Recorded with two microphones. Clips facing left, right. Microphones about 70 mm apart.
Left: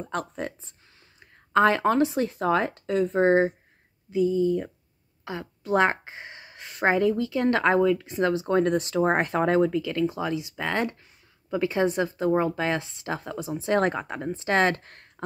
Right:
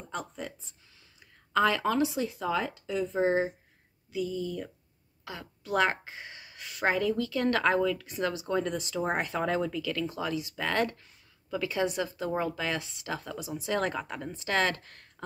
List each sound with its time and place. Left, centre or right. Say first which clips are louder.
0.1 s speech: left 5 dB; left
1.2 s speech: left 6 dB; left
4.1 s speech: left 10 dB; left